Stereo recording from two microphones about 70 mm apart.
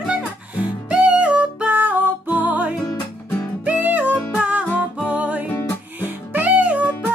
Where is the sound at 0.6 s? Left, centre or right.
Centre.